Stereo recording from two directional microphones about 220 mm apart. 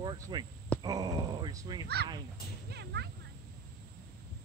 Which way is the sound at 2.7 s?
50° right (ahead or behind).